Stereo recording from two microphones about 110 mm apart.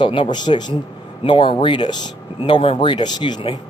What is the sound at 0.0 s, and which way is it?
Speech, 50° left (ahead or behind).